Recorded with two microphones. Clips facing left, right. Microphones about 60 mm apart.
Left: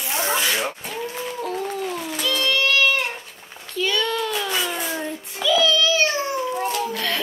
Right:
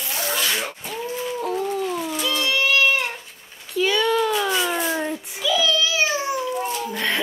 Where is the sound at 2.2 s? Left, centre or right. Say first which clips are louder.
Left 1 dB; centre.